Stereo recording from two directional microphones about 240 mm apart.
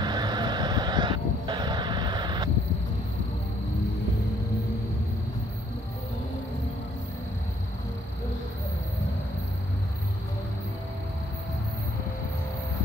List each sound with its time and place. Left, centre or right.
0.0 s vehicle: centre